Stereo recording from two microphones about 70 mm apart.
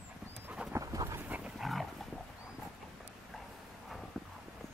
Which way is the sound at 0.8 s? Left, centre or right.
Right.